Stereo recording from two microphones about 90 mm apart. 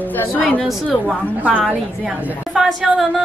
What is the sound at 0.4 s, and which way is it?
Speech, 15° left (ahead or behind).